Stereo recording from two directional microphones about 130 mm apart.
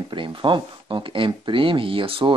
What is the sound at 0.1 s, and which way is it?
Speech, 40° right (ahead or behind).